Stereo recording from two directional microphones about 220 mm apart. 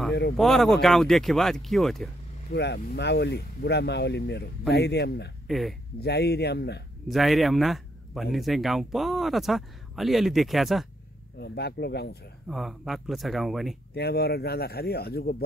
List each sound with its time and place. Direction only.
0.4 s speech: centre (ahead or behind)
2.5 s speech: 50° left (ahead or behind)
5.5 s speech: centre (ahead or behind)
5.9 s speech: 50° left (ahead or behind)
7.1 s speech: centre (ahead or behind)
11.3 s speech: 50° left (ahead or behind)
12.4 s speech: centre (ahead or behind)
13.9 s speech: 45° left (ahead or behind)